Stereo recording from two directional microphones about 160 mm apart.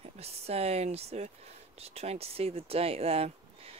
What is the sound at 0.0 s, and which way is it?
Speech, 40° right (ahead or behind).